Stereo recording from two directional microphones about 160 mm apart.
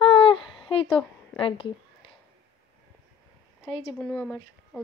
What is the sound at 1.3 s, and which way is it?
Speech, 35° left (ahead or behind).